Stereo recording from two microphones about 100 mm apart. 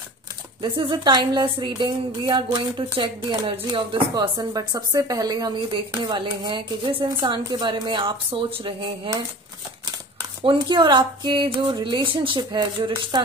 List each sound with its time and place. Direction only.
0.6 s a woman's voice: 50° right (ahead or behind)
4.1 s speech: 40° right (ahead or behind)
5.7 s a woman's voice: 50° right (ahead or behind)
10.4 s a woman's voice: 55° right (ahead or behind)
11.5 s speech: 40° right (ahead or behind)
11.8 s a woman's voice: 55° right (ahead or behind)